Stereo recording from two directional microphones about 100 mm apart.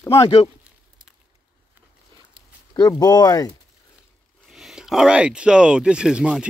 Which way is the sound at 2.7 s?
40° left (ahead or behind).